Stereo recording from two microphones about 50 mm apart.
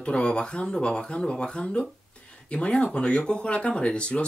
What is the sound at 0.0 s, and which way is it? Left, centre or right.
Speech, centre.